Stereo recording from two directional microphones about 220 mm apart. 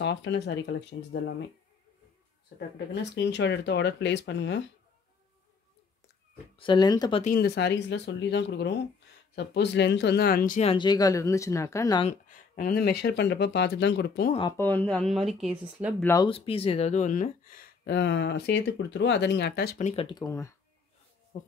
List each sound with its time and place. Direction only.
0.0 s speech: 55° left (ahead or behind)
2.9 s speech: 50° left (ahead or behind)
6.6 s speech: 20° left (ahead or behind)
7.2 s speech: 45° left (ahead or behind)
10.7 s speech: 20° left (ahead or behind)
12.1 s speech: 40° left (ahead or behind)
14.6 s speech: 10° left (ahead or behind)
16.0 s speech: 15° left (ahead or behind)
16.3 s speech: 25° left (ahead or behind); by 19.9 s 45° left (ahead or behind)
19.9 s speech: 25° left (ahead or behind)
21.3 s speech: 40° left (ahead or behind)